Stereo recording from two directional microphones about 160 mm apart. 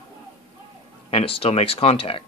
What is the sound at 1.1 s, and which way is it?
Speech, 35° left (ahead or behind).